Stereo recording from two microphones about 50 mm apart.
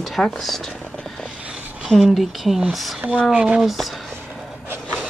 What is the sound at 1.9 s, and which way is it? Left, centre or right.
Speech, centre.